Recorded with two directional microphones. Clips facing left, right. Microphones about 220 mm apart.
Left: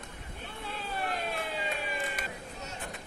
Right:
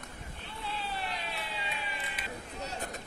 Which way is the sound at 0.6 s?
50° left (ahead or behind).